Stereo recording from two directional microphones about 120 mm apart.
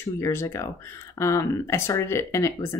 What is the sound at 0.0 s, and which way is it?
Speech, 20° left (ahead or behind).